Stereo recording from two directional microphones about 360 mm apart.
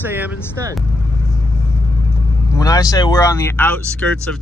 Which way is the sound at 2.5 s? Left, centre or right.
Centre.